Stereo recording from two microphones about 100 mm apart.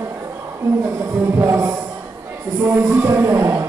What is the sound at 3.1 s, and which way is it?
Music, 30° right (ahead or behind).